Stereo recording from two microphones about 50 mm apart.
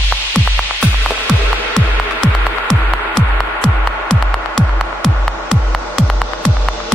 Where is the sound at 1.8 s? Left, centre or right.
Centre.